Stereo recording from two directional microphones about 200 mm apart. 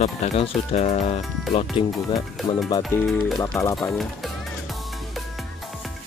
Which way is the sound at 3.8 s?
Centre (ahead or behind).